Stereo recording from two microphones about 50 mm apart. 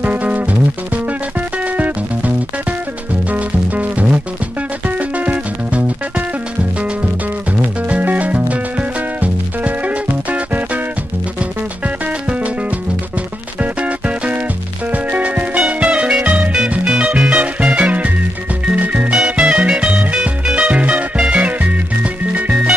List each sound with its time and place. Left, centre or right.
0.0 s music: right
3.3 s music: right
7.9 s music: right
13.6 s music: right